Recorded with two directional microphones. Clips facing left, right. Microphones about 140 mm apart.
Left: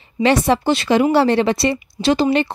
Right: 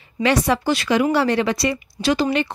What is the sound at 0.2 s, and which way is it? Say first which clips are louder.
A woman's voice: left 3 dB; 25° left (ahead or behind).